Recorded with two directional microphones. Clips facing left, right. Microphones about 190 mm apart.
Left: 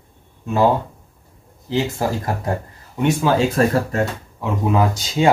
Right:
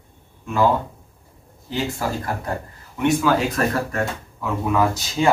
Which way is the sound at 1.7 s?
20° left (ahead or behind).